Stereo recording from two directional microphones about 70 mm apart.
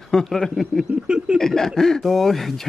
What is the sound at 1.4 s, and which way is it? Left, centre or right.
Speech, centre.